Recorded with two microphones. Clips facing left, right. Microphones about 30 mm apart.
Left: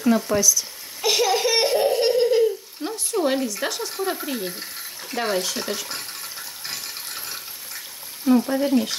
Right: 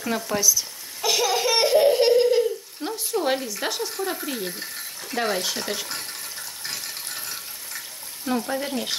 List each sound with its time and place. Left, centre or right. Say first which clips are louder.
0.0 s speech: left 6 dB; centre
0.4 s speech: left 2 dB; centre
1.0 s a sound: left 2 dB; centre
1.9 s a sound: right 1 dB; centre
3.4 s speech: left 1 dB; centre
3.9 s speech: left 2 dB; centre
6.6 s ratchet: even; centre
8.5 s speech: left 6 dB; centre